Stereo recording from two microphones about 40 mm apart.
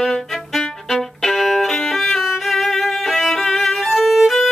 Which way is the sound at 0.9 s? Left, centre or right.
Centre.